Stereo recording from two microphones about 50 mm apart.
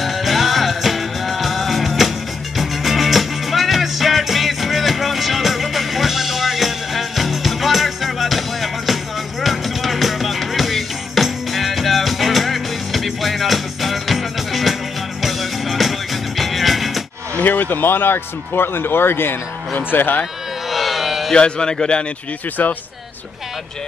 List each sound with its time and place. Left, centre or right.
0.0 s music: centre
17.4 s speech: left
20.7 s a sound: centre
21.3 s speech: centre
22.6 s speech: left